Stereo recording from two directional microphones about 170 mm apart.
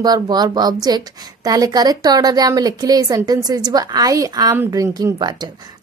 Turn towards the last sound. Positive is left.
turn(degrees=-25)  # may be behind; listen again after turning